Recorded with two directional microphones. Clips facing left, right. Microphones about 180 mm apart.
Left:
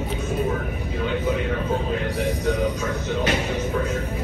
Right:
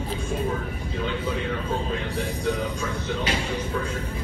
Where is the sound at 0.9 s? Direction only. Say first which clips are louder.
Left 4 dB; 10° left (ahead or behind).